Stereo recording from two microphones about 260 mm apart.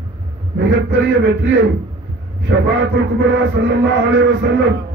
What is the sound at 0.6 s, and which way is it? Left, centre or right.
Music, right.